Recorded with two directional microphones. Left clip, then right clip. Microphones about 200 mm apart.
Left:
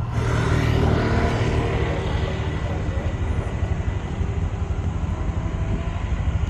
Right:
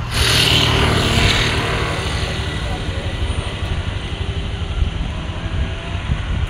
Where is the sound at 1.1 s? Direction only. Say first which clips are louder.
Right 7 dB; 30° right (ahead or behind).